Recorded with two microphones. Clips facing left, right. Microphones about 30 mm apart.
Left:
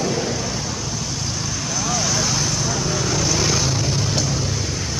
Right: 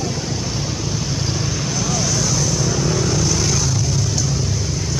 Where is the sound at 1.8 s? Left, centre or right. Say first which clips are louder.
Even; centre.